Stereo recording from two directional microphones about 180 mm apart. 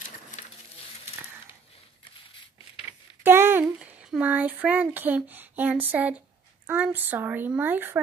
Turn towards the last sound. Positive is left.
turn(degrees=-10)  # may be behind; listen again after turning